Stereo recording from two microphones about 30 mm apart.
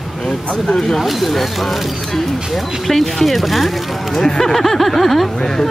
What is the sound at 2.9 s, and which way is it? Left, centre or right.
Speech, centre.